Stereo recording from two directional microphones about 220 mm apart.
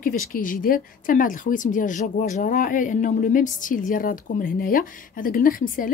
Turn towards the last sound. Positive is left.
turn(degrees=40)  # may be behind; listen again after turning